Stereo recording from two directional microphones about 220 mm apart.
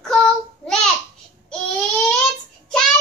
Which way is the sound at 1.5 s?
5° left (ahead or behind).